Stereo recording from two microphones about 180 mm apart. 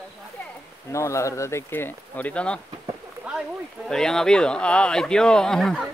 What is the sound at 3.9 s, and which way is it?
Speech, 5° left (ahead or behind).